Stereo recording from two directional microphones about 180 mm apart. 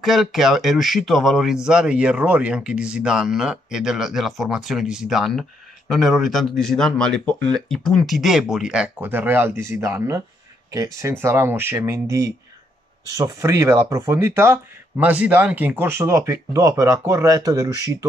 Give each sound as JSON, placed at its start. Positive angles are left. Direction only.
{"t": 0.0, "sound": "speech", "side_deg": 0}